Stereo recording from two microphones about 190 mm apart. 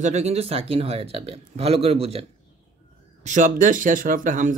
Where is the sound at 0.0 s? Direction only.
35° right (ahead or behind).